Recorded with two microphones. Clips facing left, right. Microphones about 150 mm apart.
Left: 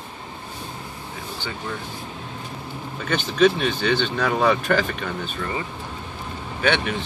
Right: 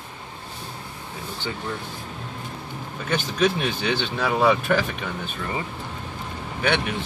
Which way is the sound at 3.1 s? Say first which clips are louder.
Left 4 dB; 5° right (ahead or behind).